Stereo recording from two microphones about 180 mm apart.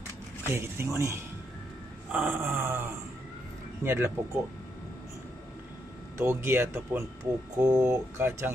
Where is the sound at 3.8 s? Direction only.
15° right (ahead or behind).